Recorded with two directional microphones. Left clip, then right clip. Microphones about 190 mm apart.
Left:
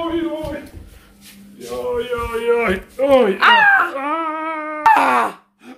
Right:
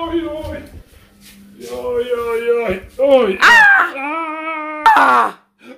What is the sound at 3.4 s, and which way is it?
Speech, 10° right (ahead or behind).